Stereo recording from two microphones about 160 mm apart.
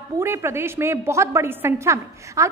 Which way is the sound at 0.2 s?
15° right (ahead or behind).